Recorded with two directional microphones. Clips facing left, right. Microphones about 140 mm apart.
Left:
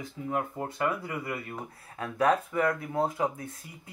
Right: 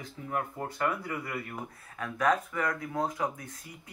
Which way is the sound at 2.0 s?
30° left (ahead or behind).